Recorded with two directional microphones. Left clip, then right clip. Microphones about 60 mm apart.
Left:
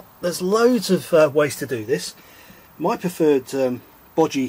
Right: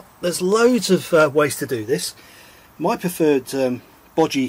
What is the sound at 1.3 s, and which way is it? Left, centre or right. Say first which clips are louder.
Speech: right 1 dB; right.